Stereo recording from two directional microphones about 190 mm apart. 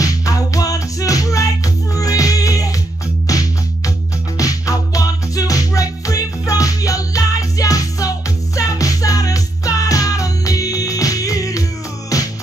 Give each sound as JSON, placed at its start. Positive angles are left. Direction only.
{"t": 0.0, "sound": "music", "side_deg": 15}